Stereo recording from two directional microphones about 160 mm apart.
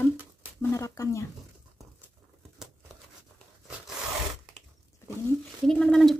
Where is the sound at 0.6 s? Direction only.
20° left (ahead or behind).